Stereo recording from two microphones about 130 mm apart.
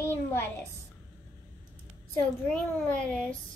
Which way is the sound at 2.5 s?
10° left (ahead or behind).